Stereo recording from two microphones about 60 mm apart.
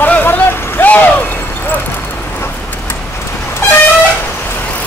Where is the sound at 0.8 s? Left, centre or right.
Left.